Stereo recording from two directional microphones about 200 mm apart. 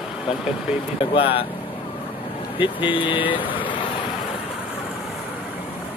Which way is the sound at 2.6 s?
25° left (ahead or behind).